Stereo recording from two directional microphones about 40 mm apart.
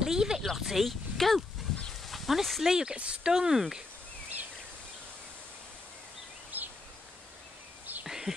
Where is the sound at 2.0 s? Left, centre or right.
Centre.